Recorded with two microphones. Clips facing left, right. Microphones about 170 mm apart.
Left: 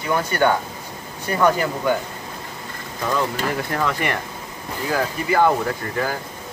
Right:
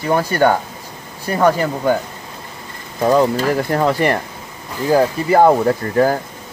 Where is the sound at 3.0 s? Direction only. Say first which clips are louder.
Right 9 dB; 35° right (ahead or behind).